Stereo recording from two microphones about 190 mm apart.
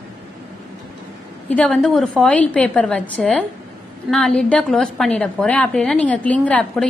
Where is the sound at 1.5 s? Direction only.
5° left (ahead or behind).